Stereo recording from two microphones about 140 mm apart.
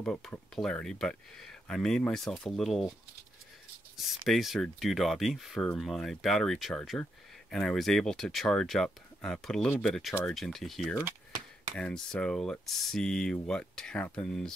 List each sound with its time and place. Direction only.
0.0 s speech: 5° left (ahead or behind)
3.9 s speech: centre (ahead or behind)